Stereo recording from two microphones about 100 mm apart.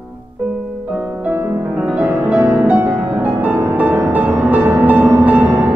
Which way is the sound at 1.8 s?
15° right (ahead or behind).